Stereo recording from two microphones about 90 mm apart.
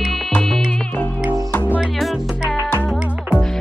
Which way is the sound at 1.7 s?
5° right (ahead or behind).